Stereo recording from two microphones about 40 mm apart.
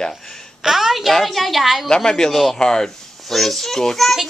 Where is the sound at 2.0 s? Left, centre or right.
Centre.